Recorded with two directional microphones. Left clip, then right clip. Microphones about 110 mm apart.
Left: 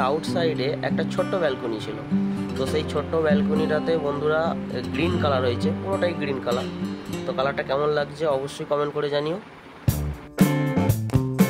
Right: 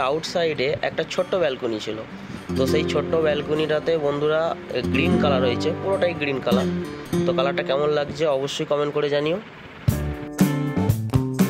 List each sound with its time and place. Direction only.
0.0 s speech: 15° right (ahead or behind)
10.4 s music: centre (ahead or behind)